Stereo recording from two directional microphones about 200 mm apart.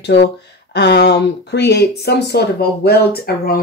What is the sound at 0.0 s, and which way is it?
Speech, 60° left (ahead or behind).